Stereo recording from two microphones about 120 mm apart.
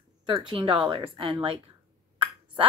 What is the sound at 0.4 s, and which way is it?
A woman's voice, 45° right (ahead or behind).